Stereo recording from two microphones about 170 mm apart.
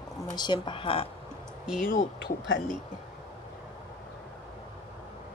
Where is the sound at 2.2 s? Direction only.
90° left.